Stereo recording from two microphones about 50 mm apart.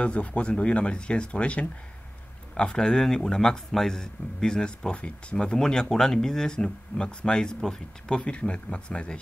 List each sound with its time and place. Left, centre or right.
0.0 s speech: left
8.2 s speech: left